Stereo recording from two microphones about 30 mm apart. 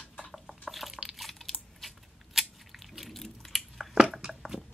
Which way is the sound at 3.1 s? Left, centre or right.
Centre.